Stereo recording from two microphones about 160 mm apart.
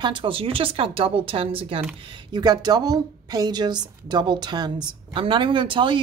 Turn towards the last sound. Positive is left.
turn(degrees=-30)  # may be behind; listen again after turning